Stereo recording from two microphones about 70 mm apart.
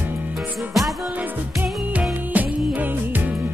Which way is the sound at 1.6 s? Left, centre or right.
Right.